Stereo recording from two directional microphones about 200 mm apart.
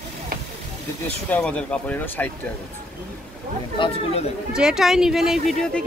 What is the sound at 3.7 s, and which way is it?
Speech, 25° left (ahead or behind).